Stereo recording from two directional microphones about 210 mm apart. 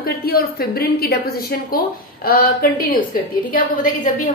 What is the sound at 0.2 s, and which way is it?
Speech, 45° left (ahead or behind).